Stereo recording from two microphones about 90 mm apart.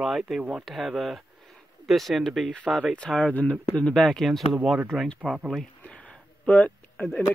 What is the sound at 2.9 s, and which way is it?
Speech, 10° left (ahead or behind).